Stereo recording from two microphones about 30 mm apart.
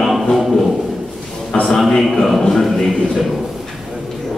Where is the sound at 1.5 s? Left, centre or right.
Centre.